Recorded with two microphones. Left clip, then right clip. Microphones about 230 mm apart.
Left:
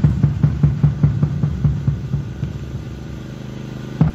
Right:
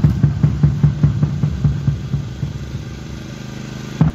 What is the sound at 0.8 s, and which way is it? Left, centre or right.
Music, centre.